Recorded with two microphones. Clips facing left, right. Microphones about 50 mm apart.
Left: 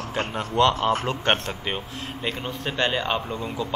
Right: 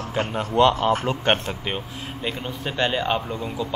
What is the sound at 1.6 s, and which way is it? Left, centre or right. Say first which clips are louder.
Speech: right 1 dB; centre.